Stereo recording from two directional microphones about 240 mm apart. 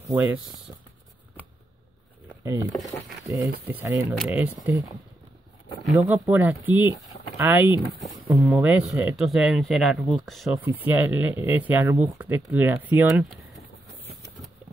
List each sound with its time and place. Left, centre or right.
3.3 s speech: centre
5.9 s speech: centre